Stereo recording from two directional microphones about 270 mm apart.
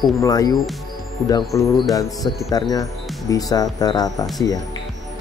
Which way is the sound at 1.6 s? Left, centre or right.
Centre.